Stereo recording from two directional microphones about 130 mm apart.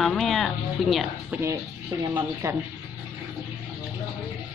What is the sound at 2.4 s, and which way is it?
Speech, 25° right (ahead or behind).